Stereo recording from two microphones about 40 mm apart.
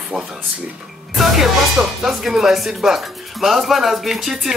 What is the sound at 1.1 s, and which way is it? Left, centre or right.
Music, centre.